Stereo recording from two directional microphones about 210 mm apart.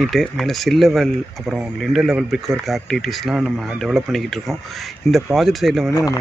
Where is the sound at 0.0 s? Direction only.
Centre (ahead or behind).